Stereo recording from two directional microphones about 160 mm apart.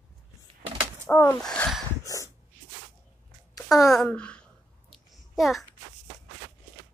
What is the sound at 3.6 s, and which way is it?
Sigh, centre (ahead or behind).